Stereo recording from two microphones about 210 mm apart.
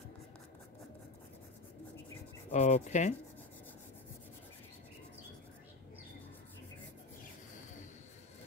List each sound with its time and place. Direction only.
2.5 s speech: 35° left (ahead or behind)